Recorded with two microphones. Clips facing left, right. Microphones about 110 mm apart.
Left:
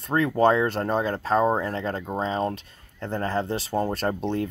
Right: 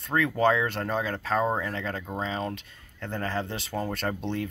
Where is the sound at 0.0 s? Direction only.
30° left (ahead or behind).